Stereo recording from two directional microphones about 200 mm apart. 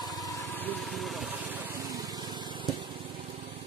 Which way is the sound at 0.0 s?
20° left (ahead or behind).